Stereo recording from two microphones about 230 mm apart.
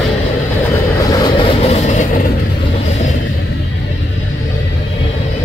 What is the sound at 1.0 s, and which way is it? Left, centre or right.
Vehicle, centre.